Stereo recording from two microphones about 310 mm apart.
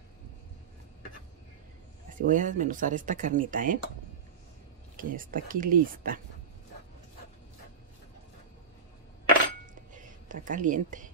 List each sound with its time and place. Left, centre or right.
2.0 s speech: right
4.9 s speech: right
9.9 s a woman's voice: right